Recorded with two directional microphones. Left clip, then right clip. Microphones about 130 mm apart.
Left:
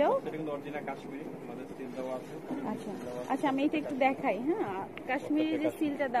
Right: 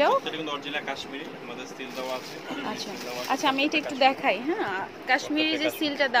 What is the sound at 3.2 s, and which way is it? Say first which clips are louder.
Speech: right 6 dB; 5° right (ahead or behind).